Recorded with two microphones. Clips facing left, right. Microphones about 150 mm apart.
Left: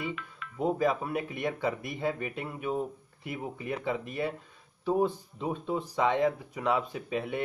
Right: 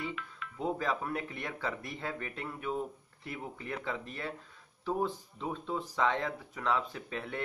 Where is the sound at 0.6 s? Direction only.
15° left (ahead or behind).